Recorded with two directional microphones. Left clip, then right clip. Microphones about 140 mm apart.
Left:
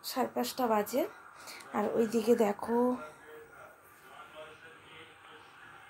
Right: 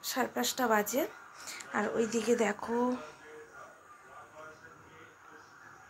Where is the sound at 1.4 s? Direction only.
20° left (ahead or behind).